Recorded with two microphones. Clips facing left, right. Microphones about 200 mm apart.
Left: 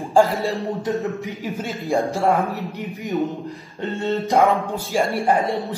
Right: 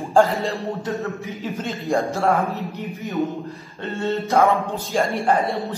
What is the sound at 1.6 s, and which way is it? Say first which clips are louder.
Speech: right 1 dB; centre (ahead or behind).